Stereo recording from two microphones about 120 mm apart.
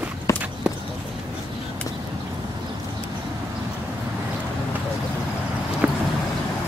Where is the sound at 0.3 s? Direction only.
25° left (ahead or behind).